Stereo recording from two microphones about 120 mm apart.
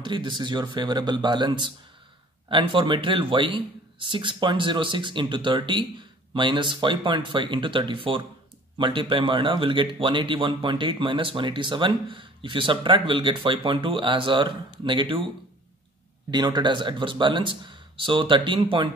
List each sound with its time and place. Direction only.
0.0 s speech: 40° right (ahead or behind)
16.3 s speech: 40° right (ahead or behind)